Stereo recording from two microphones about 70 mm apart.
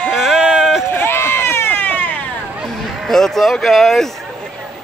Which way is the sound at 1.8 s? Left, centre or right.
Left.